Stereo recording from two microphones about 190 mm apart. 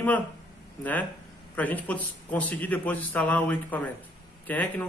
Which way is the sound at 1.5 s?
10° left (ahead or behind).